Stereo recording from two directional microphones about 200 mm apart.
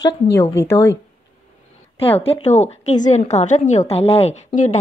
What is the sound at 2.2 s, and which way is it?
A woman's voice, 30° left (ahead or behind).